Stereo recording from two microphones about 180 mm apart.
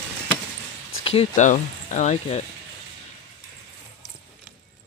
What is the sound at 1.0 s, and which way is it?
Speech, 35° left (ahead or behind).